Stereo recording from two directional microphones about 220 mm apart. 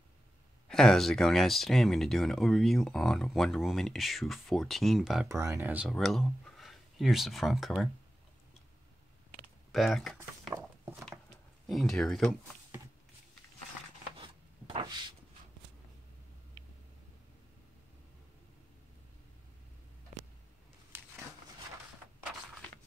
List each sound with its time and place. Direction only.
0.7 s speech: centre (ahead or behind)
5.3 s speech: 15° right (ahead or behind)
9.7 s speech: centre (ahead or behind)
11.6 s speech: centre (ahead or behind)
14.1 s rub: 25° right (ahead or behind)